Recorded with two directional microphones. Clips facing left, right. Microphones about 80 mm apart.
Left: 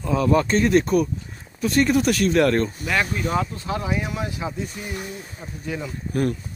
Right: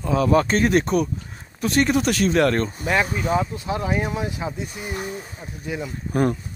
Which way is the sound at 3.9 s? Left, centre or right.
Right.